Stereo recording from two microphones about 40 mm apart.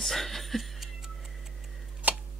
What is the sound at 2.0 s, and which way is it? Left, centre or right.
Tick-tock, right.